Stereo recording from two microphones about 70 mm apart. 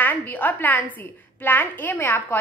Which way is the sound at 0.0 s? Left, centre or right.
Left.